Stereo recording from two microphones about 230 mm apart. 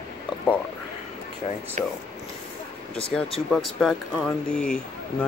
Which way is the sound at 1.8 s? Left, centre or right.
Right.